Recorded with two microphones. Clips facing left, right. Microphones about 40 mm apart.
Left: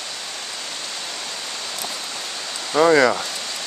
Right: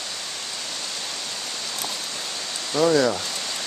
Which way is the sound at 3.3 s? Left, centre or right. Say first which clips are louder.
Left 1 dB; centre.